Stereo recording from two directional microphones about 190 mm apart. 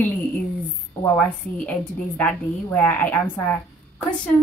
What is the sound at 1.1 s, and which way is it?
A woman's voice, 5° left (ahead or behind).